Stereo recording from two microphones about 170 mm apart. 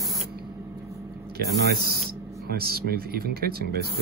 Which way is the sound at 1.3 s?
70° right (ahead or behind).